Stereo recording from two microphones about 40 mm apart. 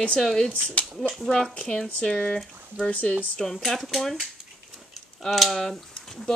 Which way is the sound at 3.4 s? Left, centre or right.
Centre.